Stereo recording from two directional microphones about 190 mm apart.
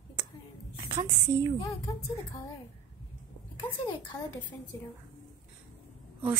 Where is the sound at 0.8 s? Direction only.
25° right (ahead or behind).